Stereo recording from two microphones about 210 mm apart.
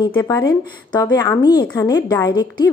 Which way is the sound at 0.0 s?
20° left (ahead or behind).